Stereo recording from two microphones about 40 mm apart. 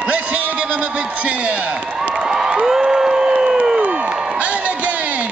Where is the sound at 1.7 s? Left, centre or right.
Right.